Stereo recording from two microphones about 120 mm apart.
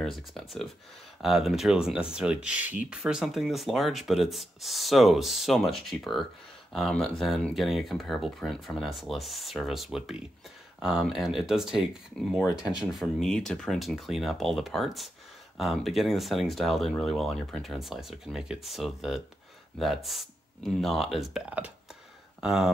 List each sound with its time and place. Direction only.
0.0 s speech: centre (ahead or behind)
12.4 s speech: 35° left (ahead or behind)
13.0 s speech: 5° left (ahead or behind)